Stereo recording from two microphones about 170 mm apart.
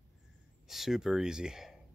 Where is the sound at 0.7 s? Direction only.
Centre (ahead or behind).